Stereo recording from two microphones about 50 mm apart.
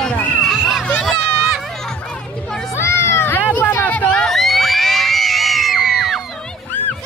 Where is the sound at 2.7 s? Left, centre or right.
Left.